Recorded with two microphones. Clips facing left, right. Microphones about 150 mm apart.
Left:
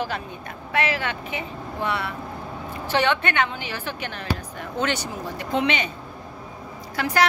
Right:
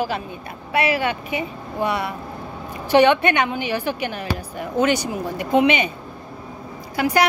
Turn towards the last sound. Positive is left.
turn(degrees=-10)  # may be behind; listen again after turning